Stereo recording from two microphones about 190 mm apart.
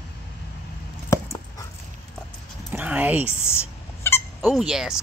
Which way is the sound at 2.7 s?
10° right (ahead or behind).